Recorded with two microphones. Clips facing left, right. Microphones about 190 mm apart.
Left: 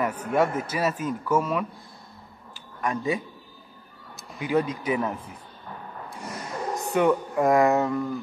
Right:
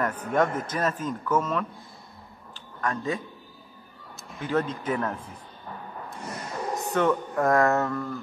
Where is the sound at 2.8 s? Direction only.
15° left (ahead or behind).